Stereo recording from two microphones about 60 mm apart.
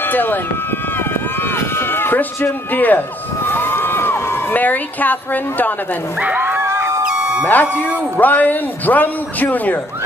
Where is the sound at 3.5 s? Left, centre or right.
Left.